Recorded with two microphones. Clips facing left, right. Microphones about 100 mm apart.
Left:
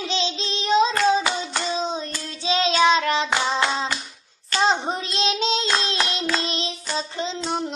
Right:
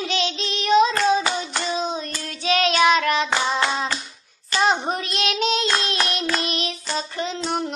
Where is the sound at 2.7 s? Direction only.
25° left (ahead or behind).